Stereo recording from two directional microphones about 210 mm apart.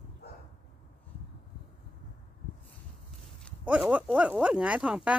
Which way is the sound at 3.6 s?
5° right (ahead or behind).